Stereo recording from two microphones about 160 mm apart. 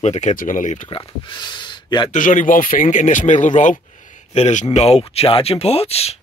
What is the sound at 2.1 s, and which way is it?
Speech, 55° left (ahead or behind).